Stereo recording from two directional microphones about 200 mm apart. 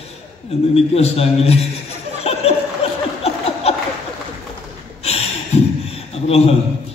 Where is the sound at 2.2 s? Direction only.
30° left (ahead or behind).